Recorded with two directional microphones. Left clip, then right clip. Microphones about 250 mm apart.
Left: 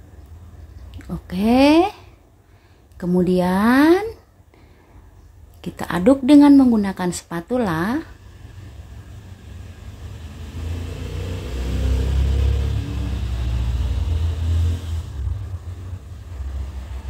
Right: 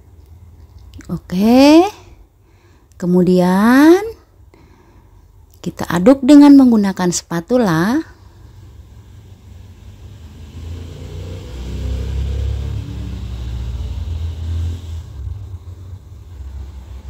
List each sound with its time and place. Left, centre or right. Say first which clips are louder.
0.9 s speech: right 6 dB; right
5.6 s a woman's voice: right 5 dB; right